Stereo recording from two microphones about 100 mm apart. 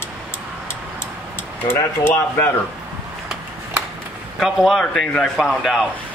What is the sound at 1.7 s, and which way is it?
Speech, 20° left (ahead or behind).